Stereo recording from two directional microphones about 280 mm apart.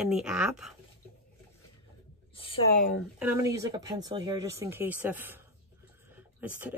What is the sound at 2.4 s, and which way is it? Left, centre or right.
Speech, centre.